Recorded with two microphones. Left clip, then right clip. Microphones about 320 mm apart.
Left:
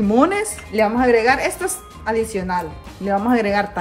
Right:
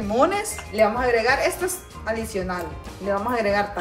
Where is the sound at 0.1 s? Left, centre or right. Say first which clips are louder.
Left 3 dB; left.